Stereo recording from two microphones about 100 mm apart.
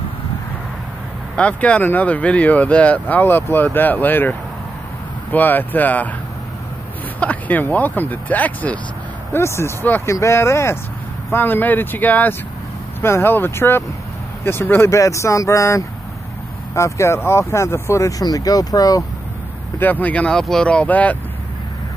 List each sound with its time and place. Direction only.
1.3 s speech: 10° left (ahead or behind)
7.2 s speech: 15° left (ahead or behind)
9.3 s speech: 25° left (ahead or behind)
19.8 s speech: 15° left (ahead or behind)